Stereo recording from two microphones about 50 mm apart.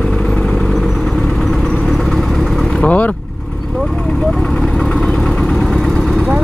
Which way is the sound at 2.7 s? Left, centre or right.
Left.